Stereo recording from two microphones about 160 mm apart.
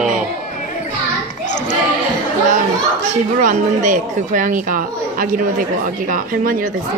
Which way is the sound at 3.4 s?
55° right (ahead or behind).